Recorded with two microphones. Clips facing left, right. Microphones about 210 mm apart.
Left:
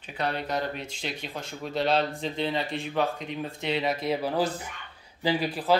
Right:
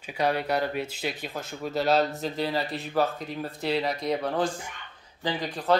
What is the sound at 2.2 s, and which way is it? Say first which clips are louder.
Speech: right 1 dB; 5° right (ahead or behind).